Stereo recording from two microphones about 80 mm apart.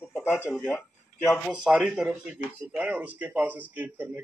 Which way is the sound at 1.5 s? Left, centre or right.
Centre.